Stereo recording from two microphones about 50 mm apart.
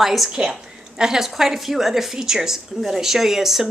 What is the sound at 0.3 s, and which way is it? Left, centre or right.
A woman's voice, centre.